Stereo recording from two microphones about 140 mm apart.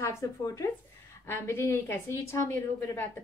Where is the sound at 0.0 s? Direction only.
20° left (ahead or behind).